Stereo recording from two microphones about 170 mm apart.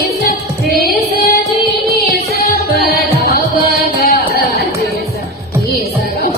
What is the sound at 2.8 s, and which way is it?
Music, 65° left (ahead or behind).